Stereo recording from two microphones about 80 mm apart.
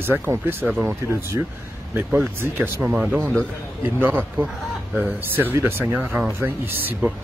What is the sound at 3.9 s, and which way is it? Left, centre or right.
Speech, right.